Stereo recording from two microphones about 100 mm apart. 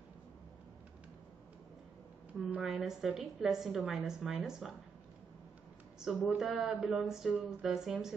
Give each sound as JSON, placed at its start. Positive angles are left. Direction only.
{"t": 2.6, "sound": "a woman's voice", "side_deg": 0}
{"t": 5.9, "sound": "a woman's voice", "side_deg": -5}